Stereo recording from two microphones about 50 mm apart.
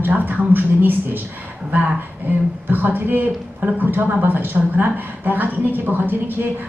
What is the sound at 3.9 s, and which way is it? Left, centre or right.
A woman's voice, right.